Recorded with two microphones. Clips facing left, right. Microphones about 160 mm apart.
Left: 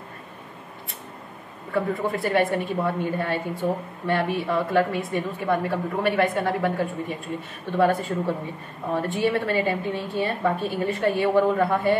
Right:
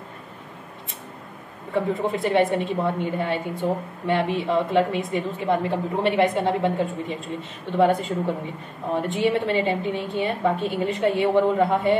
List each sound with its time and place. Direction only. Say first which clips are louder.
1.7 s a woman's voice: right 1 dB; 20° right (ahead or behind)